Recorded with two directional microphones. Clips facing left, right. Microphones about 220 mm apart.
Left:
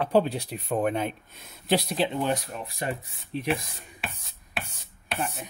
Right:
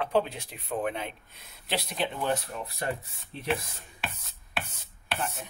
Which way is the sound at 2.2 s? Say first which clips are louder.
Left 2 dB; 15° left (ahead or behind).